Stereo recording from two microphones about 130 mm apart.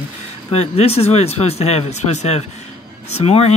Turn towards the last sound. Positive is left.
turn(degrees=50)  # may be behind; listen again after turning